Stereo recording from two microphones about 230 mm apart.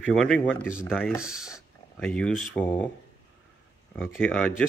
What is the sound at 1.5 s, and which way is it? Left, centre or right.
Speech, centre.